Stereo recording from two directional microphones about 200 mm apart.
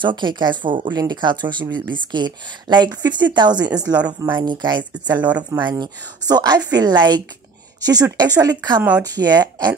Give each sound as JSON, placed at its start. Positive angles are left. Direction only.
{"t": 0.0, "sound": "speech", "side_deg": -20}